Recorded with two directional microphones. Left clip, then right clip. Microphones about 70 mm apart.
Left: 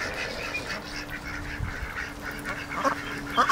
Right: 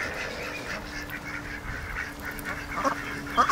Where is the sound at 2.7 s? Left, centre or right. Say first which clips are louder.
Left 1 dB; left.